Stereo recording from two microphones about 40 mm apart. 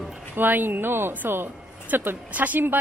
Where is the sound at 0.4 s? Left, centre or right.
Right.